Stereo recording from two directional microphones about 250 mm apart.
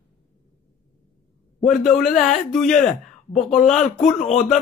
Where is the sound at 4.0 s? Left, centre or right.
Left.